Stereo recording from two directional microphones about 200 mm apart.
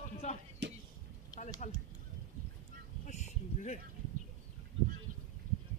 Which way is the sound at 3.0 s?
35° left (ahead or behind).